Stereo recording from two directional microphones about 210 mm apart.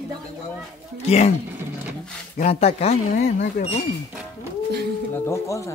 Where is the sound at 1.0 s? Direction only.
30° left (ahead or behind).